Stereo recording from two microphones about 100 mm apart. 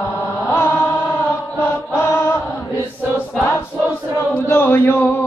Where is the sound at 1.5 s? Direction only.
20° left (ahead or behind).